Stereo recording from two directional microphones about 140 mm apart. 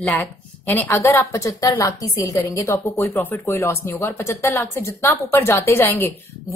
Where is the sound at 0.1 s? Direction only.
15° left (ahead or behind).